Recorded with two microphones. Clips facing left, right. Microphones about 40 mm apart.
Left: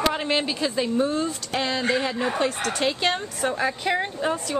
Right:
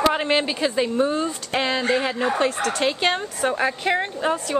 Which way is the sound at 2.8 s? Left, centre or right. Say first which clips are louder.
Right 1 dB; centre.